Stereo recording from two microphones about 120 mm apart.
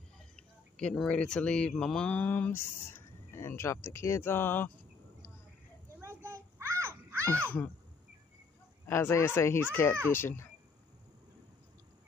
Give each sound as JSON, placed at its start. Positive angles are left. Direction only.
{"t": 0.4, "sound": "speech", "side_deg": 5}
{"t": 5.9, "sound": "a sound", "side_deg": -20}
{"t": 8.8, "sound": "a child's voice", "side_deg": 20}